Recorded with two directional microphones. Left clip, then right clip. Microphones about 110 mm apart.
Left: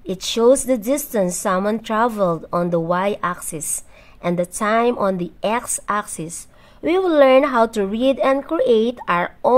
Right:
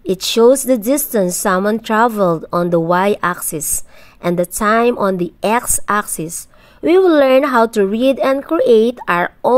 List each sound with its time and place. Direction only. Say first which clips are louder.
0.0 s a woman's voice: right 5 dB; 45° right (ahead or behind)